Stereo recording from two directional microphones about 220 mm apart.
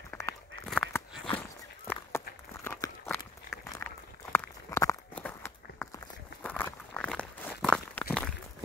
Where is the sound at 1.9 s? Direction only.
10° left (ahead or behind).